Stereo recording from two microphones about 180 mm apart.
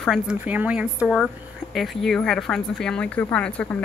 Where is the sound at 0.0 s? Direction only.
Centre (ahead or behind).